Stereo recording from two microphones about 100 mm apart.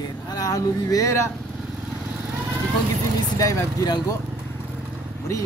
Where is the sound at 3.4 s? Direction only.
35° left (ahead or behind).